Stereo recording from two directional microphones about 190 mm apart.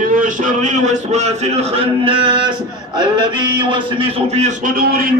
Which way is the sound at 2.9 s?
25° right (ahead or behind).